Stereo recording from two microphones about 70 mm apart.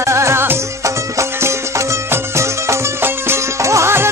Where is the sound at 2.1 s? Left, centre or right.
Right.